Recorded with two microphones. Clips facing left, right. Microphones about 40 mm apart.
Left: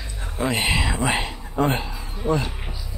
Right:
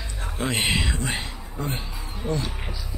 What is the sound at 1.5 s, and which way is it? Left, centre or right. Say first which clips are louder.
Speech: left 10 dB; left.